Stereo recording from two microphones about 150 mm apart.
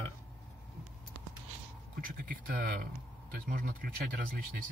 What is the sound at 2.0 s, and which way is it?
Speech, 65° right (ahead or behind).